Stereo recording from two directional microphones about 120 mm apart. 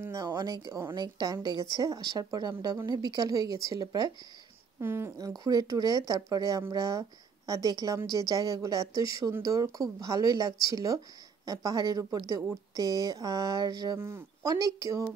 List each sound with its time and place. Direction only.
0.0 s speech: 30° right (ahead or behind)
4.7 s speech: 20° right (ahead or behind)
5.4 s speech: 30° right (ahead or behind)
13.9 s speech: 20° right (ahead or behind)